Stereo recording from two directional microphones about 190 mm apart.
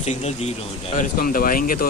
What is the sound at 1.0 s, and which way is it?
Speech, 45° left (ahead or behind).